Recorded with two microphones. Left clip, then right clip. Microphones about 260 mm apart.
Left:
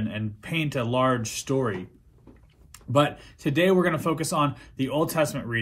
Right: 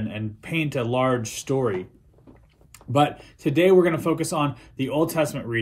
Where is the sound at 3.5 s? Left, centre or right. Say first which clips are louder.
Right 4 dB; left.